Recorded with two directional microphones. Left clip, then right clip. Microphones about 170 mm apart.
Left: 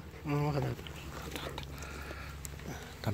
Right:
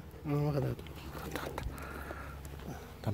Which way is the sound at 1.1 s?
35° right (ahead or behind).